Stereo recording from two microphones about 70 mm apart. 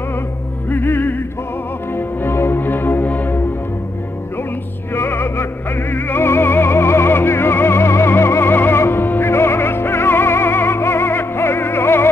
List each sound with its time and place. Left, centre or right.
0.7 s music: left
4.9 s music: left